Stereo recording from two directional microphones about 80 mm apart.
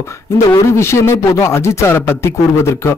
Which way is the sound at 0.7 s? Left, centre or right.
Left.